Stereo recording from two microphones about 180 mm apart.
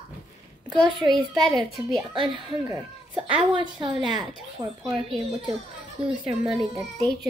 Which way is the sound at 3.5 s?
25° right (ahead or behind).